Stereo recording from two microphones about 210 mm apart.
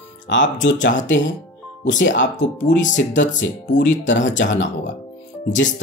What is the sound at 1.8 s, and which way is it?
Speech, 60° left (ahead or behind).